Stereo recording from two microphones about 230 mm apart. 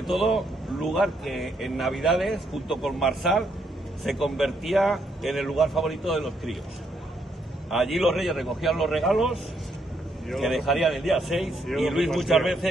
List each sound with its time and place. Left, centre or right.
0.0 s speech: centre
7.7 s speech: centre